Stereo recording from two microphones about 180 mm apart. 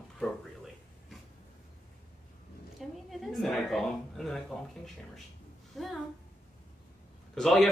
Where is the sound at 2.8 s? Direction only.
Centre (ahead or behind).